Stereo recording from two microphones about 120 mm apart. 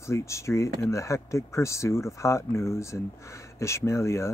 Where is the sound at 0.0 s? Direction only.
25° left (ahead or behind).